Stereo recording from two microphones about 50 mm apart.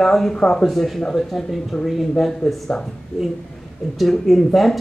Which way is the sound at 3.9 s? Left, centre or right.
Centre.